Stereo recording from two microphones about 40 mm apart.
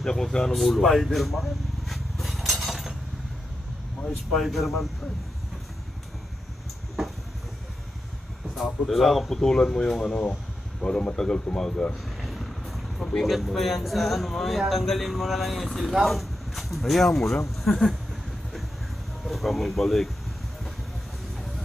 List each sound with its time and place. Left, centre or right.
0.0 s speech: centre
0.6 s vehicle: centre
2.6 s a sound: centre
4.3 s a man's voice: centre
8.5 s a man's voice: centre
9.3 s speech: centre
12.2 s vehicle: centre
13.2 s a man's voice: centre
19.2 s speech: centre